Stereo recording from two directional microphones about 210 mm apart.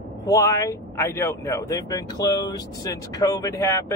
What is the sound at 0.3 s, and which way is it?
Speech, 15° left (ahead or behind).